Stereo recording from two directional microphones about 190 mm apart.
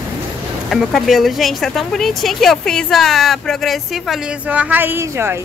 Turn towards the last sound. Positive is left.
turn(degrees=-10)  # may be behind; listen again after turning